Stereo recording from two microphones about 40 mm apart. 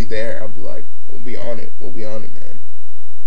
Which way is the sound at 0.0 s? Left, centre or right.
Centre.